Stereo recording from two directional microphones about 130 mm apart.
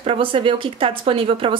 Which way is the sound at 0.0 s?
45° right (ahead or behind).